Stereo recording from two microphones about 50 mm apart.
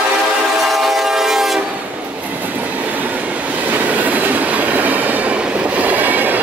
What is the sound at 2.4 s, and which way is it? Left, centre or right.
Train, right.